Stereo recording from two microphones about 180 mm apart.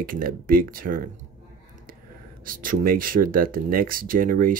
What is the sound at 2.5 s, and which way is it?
Speech, 50° right (ahead or behind).